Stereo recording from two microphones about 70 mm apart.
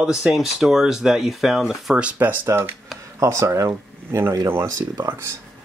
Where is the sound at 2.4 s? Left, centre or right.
Right.